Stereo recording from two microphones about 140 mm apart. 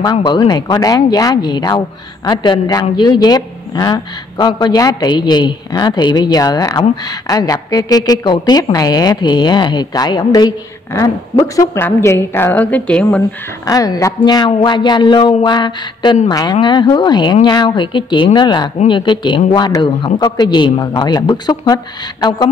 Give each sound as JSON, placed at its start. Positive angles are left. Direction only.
{"t": 0.0, "sound": "a woman's voice", "side_deg": 30}
{"t": 13.7, "sound": "speech", "side_deg": 25}